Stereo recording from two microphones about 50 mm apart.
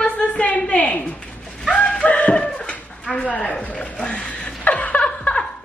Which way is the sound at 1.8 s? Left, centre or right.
Left.